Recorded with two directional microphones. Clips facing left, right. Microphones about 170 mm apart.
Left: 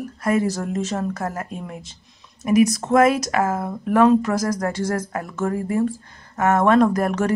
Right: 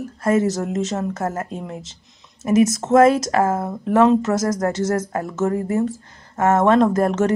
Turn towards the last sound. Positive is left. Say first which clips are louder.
# right 2 dB
turn(degrees=-25)  # may be behind; listen again after turning